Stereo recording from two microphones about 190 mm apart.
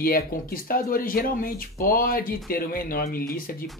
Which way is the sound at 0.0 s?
50° left (ahead or behind).